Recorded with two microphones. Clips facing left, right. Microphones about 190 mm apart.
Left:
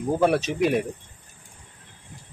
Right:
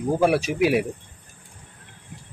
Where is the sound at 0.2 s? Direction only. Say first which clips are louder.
Right 1 dB; 10° right (ahead or behind).